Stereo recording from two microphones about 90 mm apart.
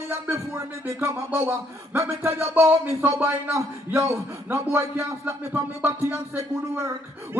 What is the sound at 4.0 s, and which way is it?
Speech, 30° right (ahead or behind).